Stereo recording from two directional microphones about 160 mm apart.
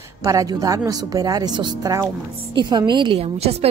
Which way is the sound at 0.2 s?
20° right (ahead or behind).